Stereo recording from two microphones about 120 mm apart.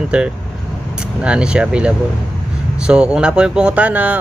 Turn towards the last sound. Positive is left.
turn(degrees=-10)  # may be behind; listen again after turning